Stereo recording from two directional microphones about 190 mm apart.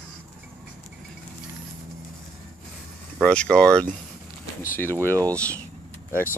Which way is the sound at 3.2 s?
5° left (ahead or behind).